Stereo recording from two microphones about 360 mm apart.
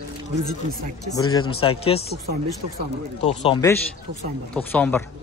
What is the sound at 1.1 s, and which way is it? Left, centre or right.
Speech, centre.